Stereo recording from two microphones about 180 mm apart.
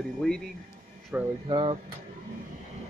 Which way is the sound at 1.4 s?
30° right (ahead or behind).